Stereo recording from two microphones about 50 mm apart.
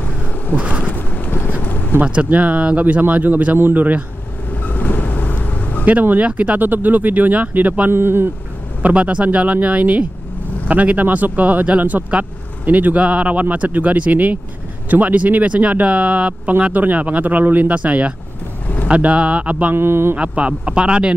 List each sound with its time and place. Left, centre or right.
0.6 s bee: right
0.9 s vehicle: left
2.2 s speech: right
3.5 s speech: right
4.5 s vehicle: left
5.9 s speech: right
6.6 s speech: right
7.9 s speech: right
8.8 s speech: right
19.7 s speech: right
20.2 s speech: right